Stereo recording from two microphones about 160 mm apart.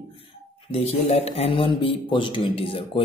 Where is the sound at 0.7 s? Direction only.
40° left (ahead or behind).